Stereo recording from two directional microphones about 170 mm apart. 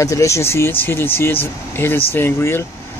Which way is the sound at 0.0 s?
20° left (ahead or behind).